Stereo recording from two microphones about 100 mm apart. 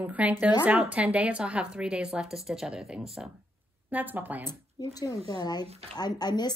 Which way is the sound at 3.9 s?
20° right (ahead or behind).